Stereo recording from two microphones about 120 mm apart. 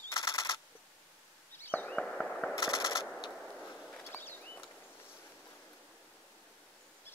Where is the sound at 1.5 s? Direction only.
15° left (ahead or behind); by 3.7 s 5° right (ahead or behind).